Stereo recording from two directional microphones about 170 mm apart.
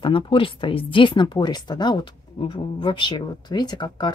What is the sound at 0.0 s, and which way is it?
Speech, 30° left (ahead or behind).